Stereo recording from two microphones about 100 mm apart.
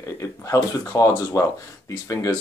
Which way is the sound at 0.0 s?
35° left (ahead or behind).